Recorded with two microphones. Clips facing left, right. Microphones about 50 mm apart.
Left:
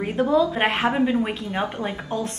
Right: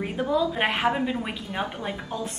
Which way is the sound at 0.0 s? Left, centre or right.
Centre.